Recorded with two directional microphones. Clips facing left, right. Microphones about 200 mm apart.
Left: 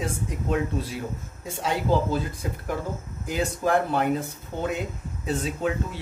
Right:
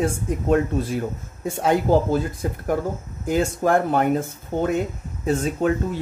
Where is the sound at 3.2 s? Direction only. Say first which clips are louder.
Right 5 dB; 50° right (ahead or behind).